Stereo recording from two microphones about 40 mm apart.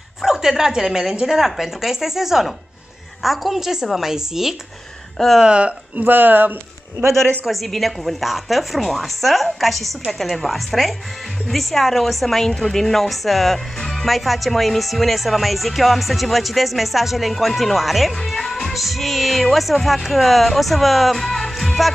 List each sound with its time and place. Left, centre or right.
0.2 s a woman's voice: centre
5.4 s speech: right
5.9 s speech: right
7.6 s a woman's voice: centre